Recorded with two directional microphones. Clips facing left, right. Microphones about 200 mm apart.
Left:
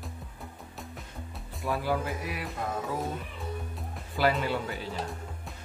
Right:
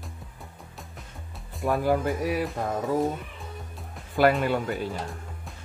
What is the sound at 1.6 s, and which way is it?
Speech, 50° right (ahead or behind).